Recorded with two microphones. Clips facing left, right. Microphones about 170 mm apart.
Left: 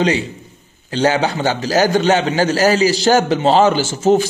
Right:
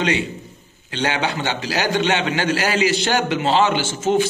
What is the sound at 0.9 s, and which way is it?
A man's voice, 40° left (ahead or behind).